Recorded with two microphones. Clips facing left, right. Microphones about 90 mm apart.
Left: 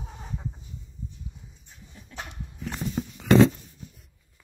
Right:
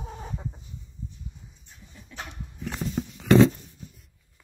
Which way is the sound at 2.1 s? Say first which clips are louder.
Even; 40° left (ahead or behind).